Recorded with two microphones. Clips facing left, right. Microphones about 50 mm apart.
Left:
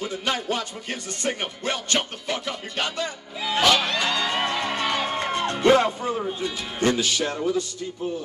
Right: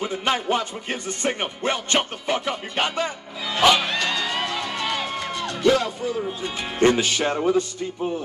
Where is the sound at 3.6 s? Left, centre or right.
Centre.